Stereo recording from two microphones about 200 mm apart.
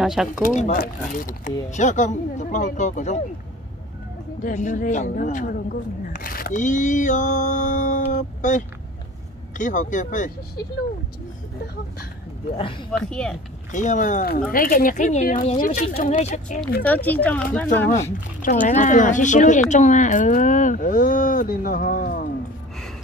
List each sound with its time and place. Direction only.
0.0 s speech: centre (ahead or behind)
0.4 s a woman's voice: 40° left (ahead or behind)
4.4 s a woman's voice: 40° left (ahead or behind)
12.5 s speech: 25° left (ahead or behind)
13.1 s speech: 5° left (ahead or behind)
13.7 s a woman's voice: 40° left (ahead or behind)
16.8 s speech: 10° left (ahead or behind)
18.4 s a woman's voice: 40° left (ahead or behind)